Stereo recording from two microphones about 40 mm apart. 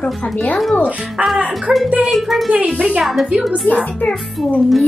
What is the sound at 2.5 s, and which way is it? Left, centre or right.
Speech, right.